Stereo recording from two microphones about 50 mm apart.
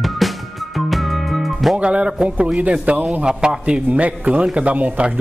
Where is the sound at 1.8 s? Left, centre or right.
Right.